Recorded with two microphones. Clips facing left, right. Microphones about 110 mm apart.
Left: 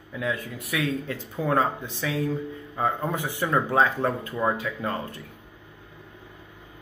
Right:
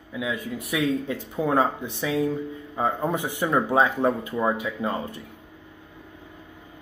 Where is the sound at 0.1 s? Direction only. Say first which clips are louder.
Right 1 dB; 10° right (ahead or behind).